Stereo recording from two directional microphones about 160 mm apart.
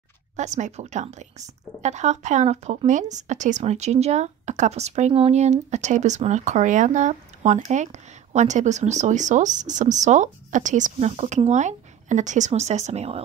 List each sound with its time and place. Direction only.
0.4 s speech: 50° right (ahead or behind)